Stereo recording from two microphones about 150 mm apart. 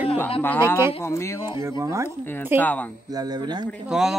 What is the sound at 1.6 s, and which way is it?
Speech, 20° right (ahead or behind).